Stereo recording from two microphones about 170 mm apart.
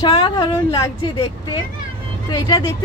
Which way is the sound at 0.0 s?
30° left (ahead or behind).